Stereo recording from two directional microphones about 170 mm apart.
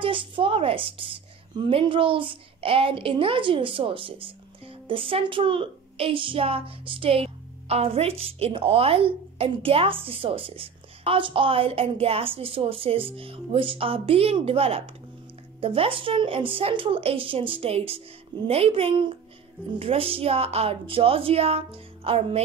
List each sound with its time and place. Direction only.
0.0 s a woman's voice: 30° right (ahead or behind)